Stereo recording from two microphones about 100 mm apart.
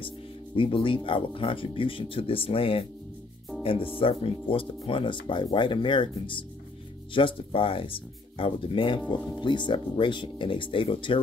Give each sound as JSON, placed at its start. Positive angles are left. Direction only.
{"t": 0.6, "sound": "speech", "side_deg": 60}